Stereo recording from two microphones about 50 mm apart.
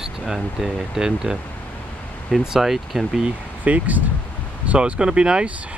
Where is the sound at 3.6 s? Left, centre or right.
Right.